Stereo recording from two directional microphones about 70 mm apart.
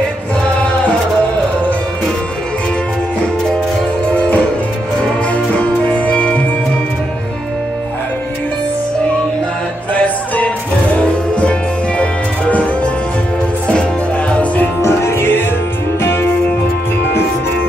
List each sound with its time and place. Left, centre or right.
4.0 s music: centre
9.9 s music: left
14.3 s music: centre
14.8 s music: left